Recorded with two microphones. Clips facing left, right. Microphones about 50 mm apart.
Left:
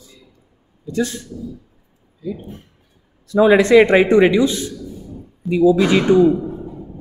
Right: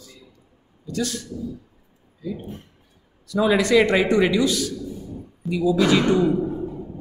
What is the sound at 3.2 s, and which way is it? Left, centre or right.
A man's voice, left.